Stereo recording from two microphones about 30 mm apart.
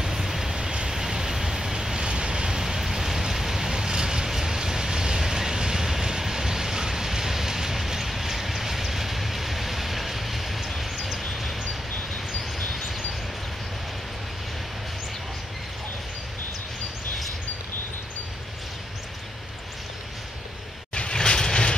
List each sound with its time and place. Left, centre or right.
0.0 s train: centre
0.6 s train: right
2.0 s vehicle: right
2.6 s rain: centre
3.7 s vehicle: right; by 11.5 s centre
21.1 s train: left